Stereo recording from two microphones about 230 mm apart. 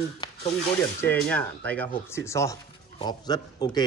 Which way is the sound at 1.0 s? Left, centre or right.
Centre.